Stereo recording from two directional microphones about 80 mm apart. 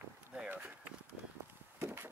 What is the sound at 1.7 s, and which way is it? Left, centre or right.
Wood, right.